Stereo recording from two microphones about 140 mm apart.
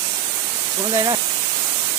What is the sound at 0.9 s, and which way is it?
Speech, 30° right (ahead or behind).